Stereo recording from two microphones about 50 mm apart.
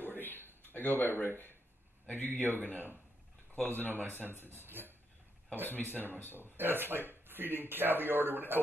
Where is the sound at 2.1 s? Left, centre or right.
Left.